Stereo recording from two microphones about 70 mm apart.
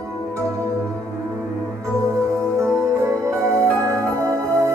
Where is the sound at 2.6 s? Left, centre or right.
Right.